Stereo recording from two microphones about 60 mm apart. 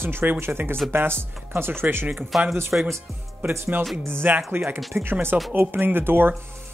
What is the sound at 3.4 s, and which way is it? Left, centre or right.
Speech, right.